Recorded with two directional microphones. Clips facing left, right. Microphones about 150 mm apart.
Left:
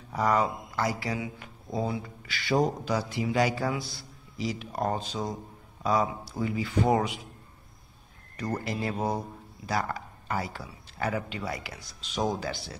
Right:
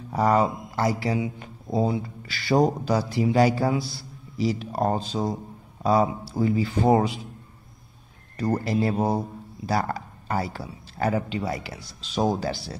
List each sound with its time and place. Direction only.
0.1 s speech: 30° right (ahead or behind)
8.4 s speech: 30° right (ahead or behind)